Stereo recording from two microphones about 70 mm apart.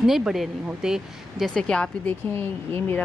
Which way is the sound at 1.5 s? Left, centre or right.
Centre.